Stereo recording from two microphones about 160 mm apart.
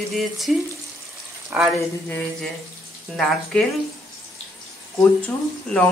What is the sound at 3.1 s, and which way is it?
Speech, centre (ahead or behind).